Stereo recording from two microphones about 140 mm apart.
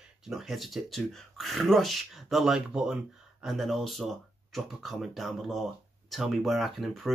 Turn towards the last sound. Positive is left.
turn(degrees=0)  # may be behind; listen again after turning